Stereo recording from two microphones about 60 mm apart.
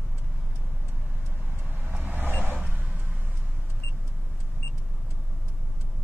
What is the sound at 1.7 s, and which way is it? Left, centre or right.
Vehicle, right.